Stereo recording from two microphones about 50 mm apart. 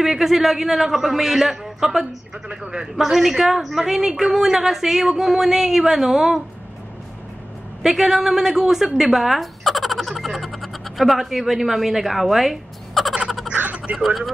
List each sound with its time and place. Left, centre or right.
0.0 s a woman's voice: centre
3.0 s a woman's voice: centre
7.8 s speech: centre
13.6 s a sound: right
13.9 s speech: centre